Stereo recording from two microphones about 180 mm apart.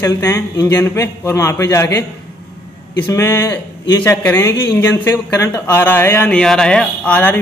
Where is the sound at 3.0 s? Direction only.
15° left (ahead or behind).